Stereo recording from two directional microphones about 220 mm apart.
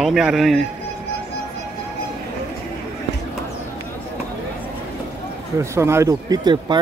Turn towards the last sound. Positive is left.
turn(degrees=-20)  # may be behind; listen again after turning